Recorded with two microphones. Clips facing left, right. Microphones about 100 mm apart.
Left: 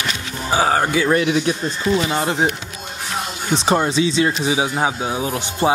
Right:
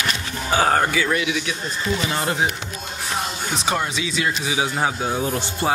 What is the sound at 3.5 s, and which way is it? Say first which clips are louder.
Speech: left 8 dB; 30° left (ahead or behind).